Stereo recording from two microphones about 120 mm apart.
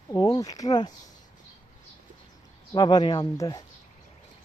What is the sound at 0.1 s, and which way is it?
Speech, 35° left (ahead or behind).